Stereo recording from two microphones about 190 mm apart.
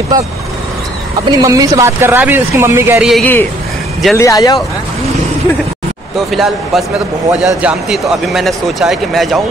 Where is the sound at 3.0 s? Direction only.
Centre (ahead or behind).